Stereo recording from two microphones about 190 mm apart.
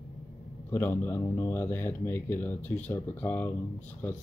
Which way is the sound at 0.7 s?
10° left (ahead or behind).